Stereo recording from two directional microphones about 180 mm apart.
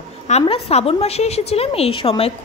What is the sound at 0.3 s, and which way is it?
A woman's voice, 35° left (ahead or behind).